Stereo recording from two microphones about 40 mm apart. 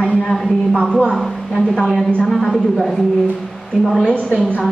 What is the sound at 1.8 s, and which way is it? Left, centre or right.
Speech, centre.